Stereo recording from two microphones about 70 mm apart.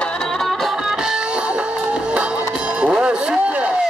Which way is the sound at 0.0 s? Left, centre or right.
Centre.